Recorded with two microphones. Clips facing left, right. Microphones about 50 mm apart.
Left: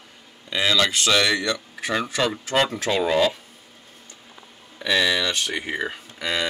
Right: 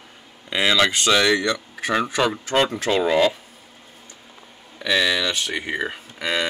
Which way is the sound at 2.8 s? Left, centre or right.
Centre.